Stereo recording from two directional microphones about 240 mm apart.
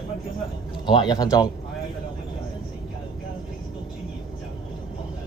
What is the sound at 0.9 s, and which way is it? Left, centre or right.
Speech, centre.